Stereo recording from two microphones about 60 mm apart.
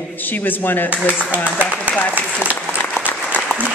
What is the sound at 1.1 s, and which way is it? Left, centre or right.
Speech, right.